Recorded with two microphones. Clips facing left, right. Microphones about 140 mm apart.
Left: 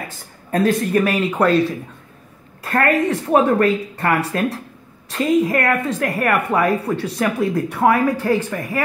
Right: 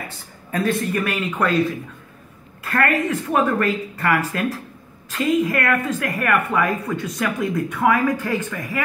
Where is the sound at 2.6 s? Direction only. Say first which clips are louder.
Left 3 dB; 35° left (ahead or behind).